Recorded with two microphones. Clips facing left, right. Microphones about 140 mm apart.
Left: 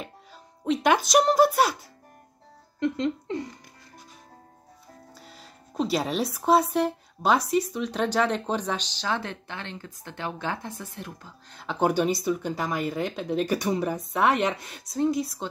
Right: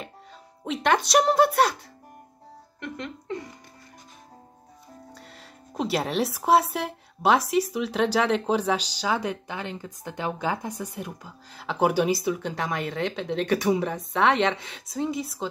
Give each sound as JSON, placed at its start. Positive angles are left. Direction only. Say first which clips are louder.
{"t": 0.8, "sound": "speech", "louder": "even", "side_deg": 5}
{"t": 2.8, "sound": "speech", "louder": "left 10 dB", "side_deg": 20}
{"t": 5.1, "sound": "music", "louder": "right 1 dB", "side_deg": 0}
{"t": 5.8, "sound": "speech", "louder": "even", "side_deg": 0}